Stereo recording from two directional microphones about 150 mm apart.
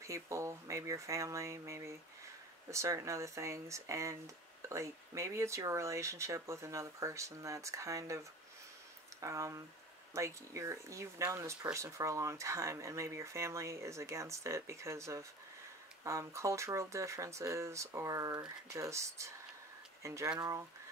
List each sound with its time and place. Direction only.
0.0 s speech: 20° right (ahead or behind)